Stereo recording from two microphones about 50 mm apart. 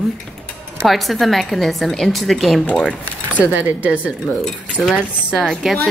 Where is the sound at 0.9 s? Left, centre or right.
Centre.